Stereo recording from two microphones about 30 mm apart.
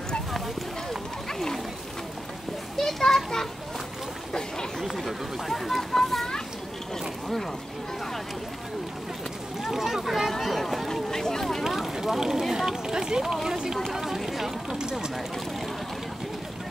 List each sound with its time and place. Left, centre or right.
2.9 s children playing: centre
4.3 s chatter: left
4.8 s a sound: centre
9.6 s a sound: centre
10.4 s boat: centre
11.1 s vehicle: centre
11.6 s a sound: centre
13.2 s speech: centre
13.5 s speech: right
13.9 s run: centre
14.2 s a sound: centre
14.8 s vehicle: right